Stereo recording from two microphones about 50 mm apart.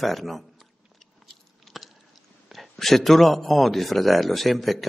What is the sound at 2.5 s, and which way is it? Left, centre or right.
A man's voice, centre.